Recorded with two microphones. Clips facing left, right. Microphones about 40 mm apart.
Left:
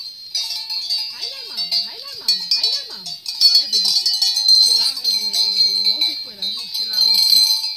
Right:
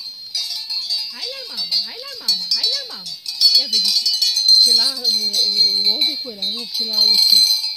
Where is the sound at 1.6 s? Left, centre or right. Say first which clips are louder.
Even; right.